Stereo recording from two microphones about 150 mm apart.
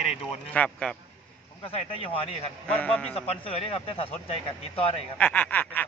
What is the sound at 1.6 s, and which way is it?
Speech, 35° left (ahead or behind).